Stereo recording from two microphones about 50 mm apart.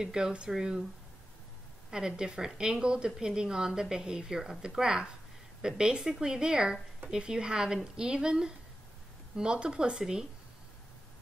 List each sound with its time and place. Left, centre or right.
0.0 s a woman's voice: centre
1.9 s a woman's voice: centre